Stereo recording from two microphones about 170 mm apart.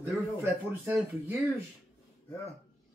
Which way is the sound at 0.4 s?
15° right (ahead or behind).